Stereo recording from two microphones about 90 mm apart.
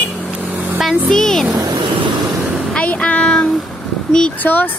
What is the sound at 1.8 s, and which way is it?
Vehicle, 70° right (ahead or behind).